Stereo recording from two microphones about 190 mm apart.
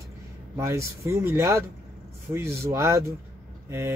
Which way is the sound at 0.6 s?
15° right (ahead or behind).